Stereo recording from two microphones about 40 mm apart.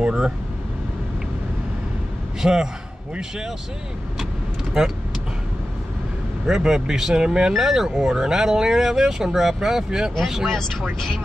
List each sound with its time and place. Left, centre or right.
0.0 s vehicle: centre
2.4 s speech: centre
4.8 s speech: centre
6.4 s speech: centre
10.4 s speech: centre